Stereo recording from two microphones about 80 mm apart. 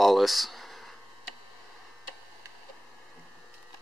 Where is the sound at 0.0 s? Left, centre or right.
Centre.